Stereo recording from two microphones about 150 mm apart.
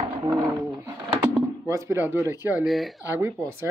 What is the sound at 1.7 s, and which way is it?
Speech, 20° right (ahead or behind).